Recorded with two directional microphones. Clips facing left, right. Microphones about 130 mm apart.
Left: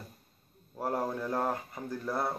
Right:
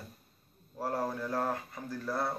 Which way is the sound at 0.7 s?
20° left (ahead or behind).